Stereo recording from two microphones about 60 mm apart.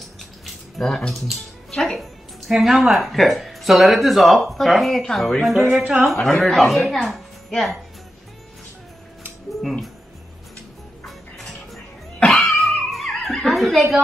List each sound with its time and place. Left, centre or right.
0.5 s a sound: centre
1.2 s music: centre
2.5 s speech: centre
5.8 s speech: right
6.0 s speech: centre
9.6 s speech: centre
11.1 s music: centre
12.3 s a sound: centre